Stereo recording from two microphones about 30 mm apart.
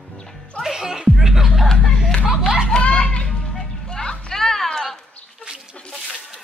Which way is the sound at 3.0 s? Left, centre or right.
Left.